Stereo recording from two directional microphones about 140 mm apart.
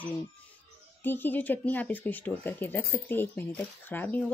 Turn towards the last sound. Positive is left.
turn(degrees=15)  # may be behind; listen again after turning